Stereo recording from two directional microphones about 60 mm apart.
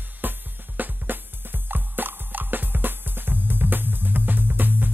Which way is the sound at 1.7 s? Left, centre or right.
Right.